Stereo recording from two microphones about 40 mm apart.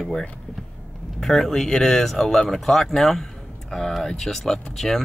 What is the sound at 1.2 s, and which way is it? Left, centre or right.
Speech, centre.